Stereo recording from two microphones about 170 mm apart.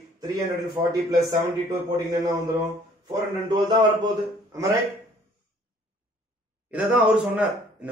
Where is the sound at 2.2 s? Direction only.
25° right (ahead or behind).